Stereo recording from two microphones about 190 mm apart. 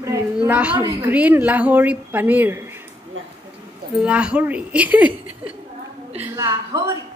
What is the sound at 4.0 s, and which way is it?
Speech, 5° right (ahead or behind).